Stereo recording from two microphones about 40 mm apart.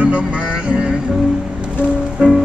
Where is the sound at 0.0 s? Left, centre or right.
Right.